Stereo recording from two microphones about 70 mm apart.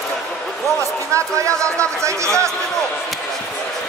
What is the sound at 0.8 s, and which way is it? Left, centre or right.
Speech, right.